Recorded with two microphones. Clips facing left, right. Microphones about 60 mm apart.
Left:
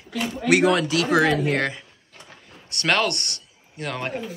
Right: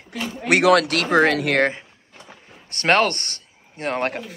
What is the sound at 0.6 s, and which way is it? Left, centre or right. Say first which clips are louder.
Speech: right 3 dB; right.